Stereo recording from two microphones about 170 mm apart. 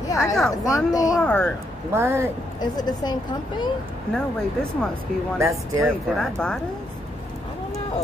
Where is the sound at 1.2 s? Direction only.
5° left (ahead or behind).